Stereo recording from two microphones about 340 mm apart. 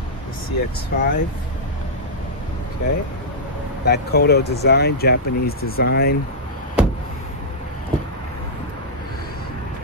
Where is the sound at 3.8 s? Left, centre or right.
Left.